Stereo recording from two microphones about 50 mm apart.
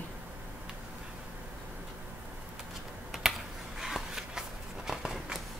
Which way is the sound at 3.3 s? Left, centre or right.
Centre.